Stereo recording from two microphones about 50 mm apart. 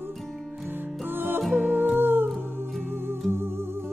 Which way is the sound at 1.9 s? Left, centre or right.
Right.